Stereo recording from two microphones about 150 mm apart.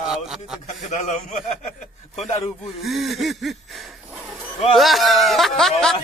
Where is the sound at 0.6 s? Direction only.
55° left (ahead or behind).